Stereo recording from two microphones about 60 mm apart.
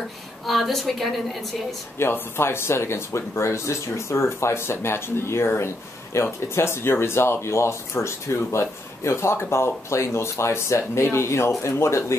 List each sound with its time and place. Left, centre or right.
0.5 s a woman's voice: centre
2.0 s speech: left